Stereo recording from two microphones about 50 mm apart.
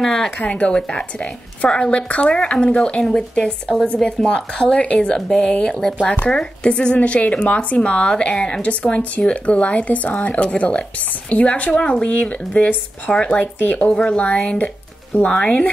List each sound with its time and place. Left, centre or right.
0.0 s speech: centre
0.4 s speech: left
0.7 s speech: centre
5.7 s speech: centre
6.0 s speech: left
7.0 s a woman's voice: left
11.7 s speech: centre
13.6 s a woman's voice: left
13.9 s speech: left